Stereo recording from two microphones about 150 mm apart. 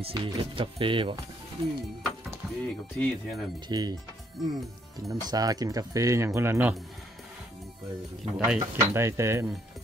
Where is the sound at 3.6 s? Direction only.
25° right (ahead or behind).